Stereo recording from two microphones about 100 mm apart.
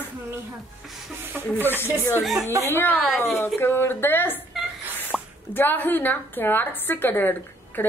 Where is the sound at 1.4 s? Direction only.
20° right (ahead or behind).